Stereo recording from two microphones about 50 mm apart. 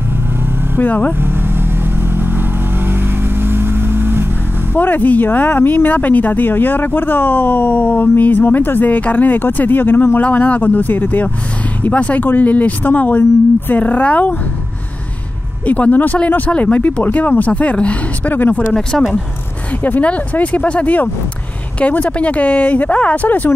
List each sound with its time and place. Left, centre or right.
0.7 s speech: left
2.1 s vehicle: right
4.7 s speech: left
10.2 s speech: left
15.6 s speech: left
17.0 s speech: left
18.7 s speech: centre
19.8 s speech: left